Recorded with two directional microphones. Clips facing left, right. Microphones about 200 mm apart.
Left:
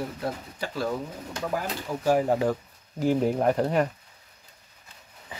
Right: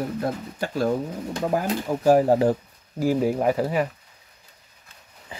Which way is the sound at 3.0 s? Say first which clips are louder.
Right 2 dB; 5° right (ahead or behind).